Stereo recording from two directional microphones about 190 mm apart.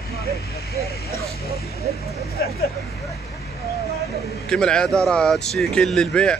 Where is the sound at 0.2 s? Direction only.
55° right (ahead or behind).